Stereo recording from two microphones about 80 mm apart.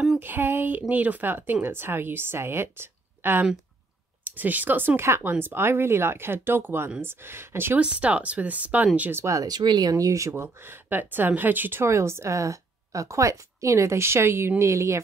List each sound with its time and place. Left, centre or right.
0.2 s speech: right
7.8 s speech: centre
9.1 s speech: right